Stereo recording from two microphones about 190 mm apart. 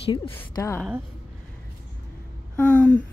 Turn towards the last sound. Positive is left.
turn(degrees=10)  # may be behind; listen again after turning